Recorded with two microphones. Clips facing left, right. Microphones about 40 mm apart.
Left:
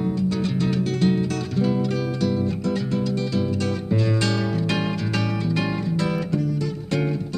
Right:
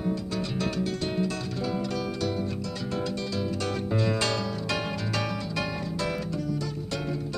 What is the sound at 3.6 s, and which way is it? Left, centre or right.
Music, centre.